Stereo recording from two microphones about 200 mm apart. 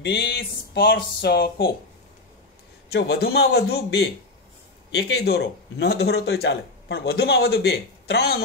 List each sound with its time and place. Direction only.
0.0 s speech: 55° left (ahead or behind)
2.9 s speech: 55° left (ahead or behind)